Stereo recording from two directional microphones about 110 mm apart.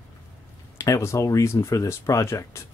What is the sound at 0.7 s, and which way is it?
Speech, 30° left (ahead or behind).